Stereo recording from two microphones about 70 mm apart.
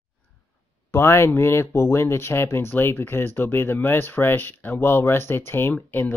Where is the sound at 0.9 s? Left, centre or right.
Left.